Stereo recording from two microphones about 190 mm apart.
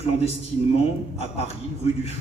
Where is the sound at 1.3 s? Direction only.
35° left (ahead or behind).